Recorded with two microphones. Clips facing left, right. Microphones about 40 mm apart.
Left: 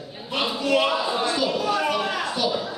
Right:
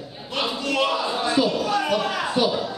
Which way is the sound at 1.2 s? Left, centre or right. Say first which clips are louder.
Right 3 dB; centre.